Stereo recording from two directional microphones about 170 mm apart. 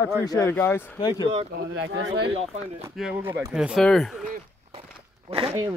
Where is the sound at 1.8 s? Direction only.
85° right.